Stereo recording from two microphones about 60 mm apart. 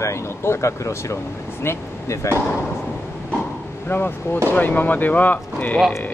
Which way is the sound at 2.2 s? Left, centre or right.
Left.